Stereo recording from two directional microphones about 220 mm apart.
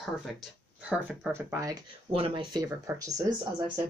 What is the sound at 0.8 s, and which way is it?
Speech, 10° right (ahead or behind).